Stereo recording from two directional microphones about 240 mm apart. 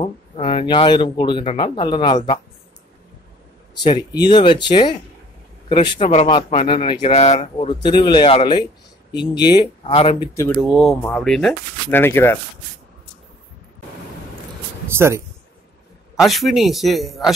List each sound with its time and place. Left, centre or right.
0.0 s speech: left
3.8 s speech: centre
10.6 s speech: centre
14.9 s speech: centre
16.2 s speech: centre